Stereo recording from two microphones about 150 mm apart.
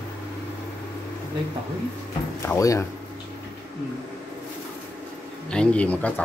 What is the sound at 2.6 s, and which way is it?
Speech, 20° left (ahead or behind).